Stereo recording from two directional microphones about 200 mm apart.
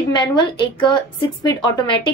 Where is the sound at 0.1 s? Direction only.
20° left (ahead or behind).